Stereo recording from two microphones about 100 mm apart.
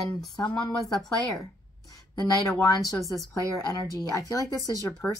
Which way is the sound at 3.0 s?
Centre (ahead or behind).